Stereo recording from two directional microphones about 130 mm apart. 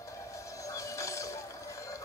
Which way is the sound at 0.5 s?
25° left (ahead or behind).